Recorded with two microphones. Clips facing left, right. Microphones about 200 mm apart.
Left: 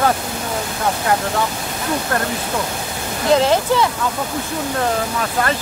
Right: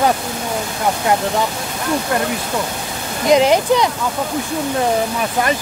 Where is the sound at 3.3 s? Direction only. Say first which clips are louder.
Right 3 dB; 15° right (ahead or behind).